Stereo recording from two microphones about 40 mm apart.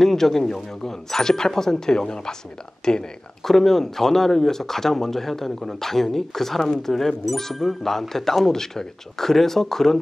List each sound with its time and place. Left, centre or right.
0.0 s speech: centre
3.4 s speech: centre